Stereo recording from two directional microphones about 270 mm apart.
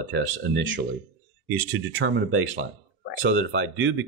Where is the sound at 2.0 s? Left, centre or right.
Right.